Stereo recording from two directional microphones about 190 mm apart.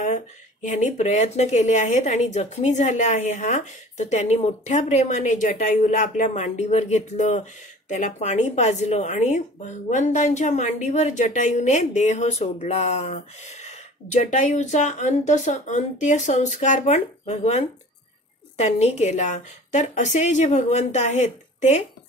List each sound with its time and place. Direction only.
0.0 s speech: 40° left (ahead or behind)